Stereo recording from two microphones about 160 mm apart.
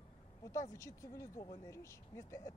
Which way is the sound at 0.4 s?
20° left (ahead or behind).